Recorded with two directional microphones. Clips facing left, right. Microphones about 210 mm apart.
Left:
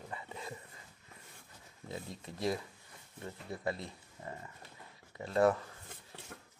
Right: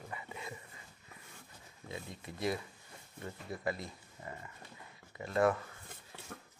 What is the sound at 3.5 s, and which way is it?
Speech, 30° left (ahead or behind).